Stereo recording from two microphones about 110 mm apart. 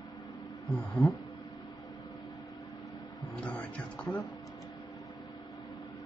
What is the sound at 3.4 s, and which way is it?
Vehicle, 10° left (ahead or behind).